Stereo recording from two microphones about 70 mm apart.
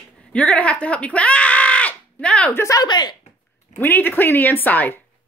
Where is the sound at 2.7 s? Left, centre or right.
Left.